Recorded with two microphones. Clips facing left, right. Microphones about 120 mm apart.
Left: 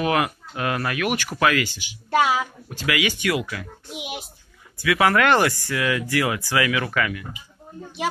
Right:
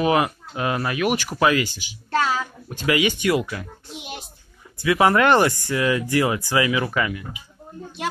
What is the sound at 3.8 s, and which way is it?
Speech, 5° left (ahead or behind).